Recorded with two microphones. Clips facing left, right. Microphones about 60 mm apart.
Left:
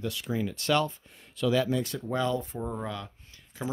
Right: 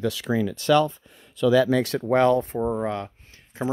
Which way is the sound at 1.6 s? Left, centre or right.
Right.